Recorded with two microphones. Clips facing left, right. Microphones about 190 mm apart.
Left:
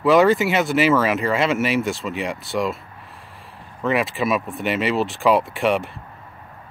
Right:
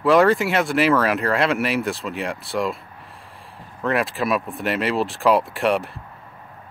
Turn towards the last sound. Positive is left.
turn(degrees=0)  # may be behind; listen again after turning